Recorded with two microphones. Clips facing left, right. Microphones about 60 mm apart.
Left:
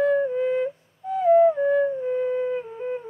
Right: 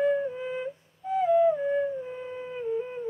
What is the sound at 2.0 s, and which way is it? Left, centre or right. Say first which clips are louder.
Wind instrument: left 13 dB; left.